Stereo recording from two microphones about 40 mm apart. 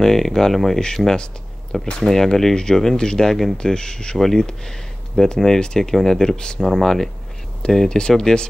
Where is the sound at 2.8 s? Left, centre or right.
Centre.